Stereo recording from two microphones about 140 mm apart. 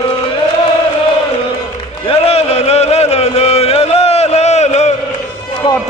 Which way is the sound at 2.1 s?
45° left (ahead or behind).